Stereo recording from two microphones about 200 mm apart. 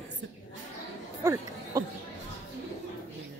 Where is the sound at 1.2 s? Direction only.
15° right (ahead or behind).